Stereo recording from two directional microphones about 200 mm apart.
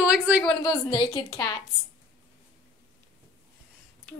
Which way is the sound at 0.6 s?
20° left (ahead or behind).